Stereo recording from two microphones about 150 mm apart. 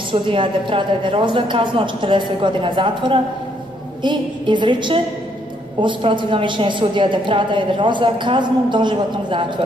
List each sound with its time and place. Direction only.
0.1 s a woman's voice: 35° right (ahead or behind)